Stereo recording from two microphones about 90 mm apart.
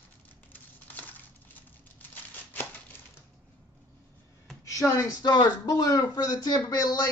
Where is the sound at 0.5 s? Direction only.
20° left (ahead or behind).